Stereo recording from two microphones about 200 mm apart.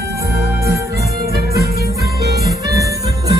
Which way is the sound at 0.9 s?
50° right (ahead or behind).